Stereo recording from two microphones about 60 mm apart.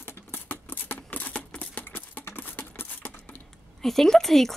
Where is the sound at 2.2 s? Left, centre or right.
Left.